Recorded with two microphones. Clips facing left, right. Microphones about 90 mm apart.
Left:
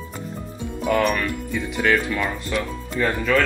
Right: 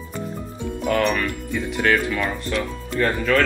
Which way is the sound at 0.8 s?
5° left (ahead or behind).